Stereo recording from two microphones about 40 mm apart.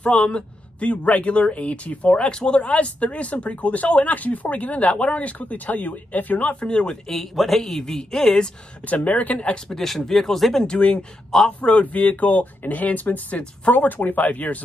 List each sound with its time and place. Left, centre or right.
0.0 s speech: left
6.5 s speech: left
7.1 s speech: centre
8.8 s speech: left
9.7 s speech: centre
10.7 s speech: left
11.6 s speech: left